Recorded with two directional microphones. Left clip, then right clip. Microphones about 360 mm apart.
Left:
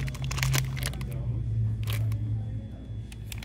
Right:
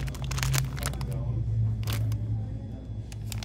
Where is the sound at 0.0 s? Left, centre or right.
Centre.